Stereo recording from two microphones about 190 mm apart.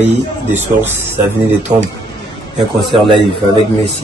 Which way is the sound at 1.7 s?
20° right (ahead or behind).